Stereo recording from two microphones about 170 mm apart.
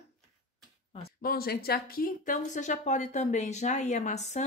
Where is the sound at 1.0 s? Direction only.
65° left (ahead or behind).